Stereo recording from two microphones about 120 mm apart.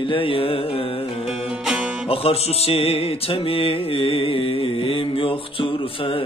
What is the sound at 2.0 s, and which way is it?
Music, 55° left (ahead or behind).